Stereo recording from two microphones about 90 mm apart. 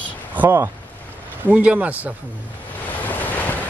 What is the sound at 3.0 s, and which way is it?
Waves, 20° left (ahead or behind).